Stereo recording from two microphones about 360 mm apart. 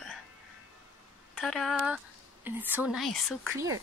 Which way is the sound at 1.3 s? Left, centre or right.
Centre.